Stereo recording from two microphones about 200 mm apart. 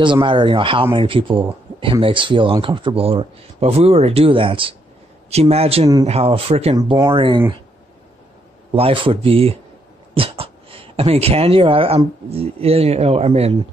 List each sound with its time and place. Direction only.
0.0 s speech: 25° right (ahead or behind)
8.7 s speech: 25° right (ahead or behind)